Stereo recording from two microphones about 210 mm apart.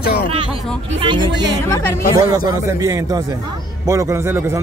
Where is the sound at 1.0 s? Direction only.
20° right (ahead or behind).